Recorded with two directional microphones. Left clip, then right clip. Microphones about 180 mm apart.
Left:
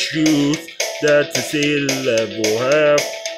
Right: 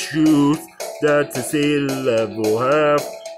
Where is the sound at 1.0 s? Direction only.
Centre (ahead or behind).